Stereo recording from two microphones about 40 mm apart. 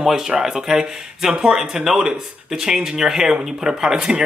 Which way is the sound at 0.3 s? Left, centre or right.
Centre.